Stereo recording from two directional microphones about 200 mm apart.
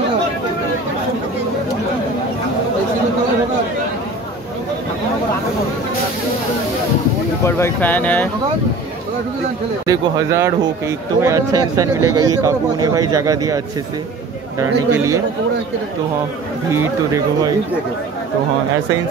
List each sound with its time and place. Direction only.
7.4 s speech: 15° left (ahead or behind)
9.8 s speech: 15° right (ahead or behind)
14.6 s speech: 15° right (ahead or behind)
16.7 s speech: 15° right (ahead or behind)